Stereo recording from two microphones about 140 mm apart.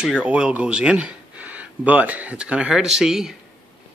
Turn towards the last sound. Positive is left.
turn(degrees=-5)  # may be behind; listen again after turning